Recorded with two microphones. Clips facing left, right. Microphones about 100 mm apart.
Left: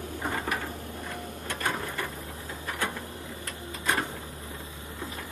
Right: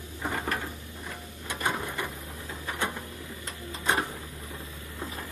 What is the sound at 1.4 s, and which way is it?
Sewing machine, 15° right (ahead or behind).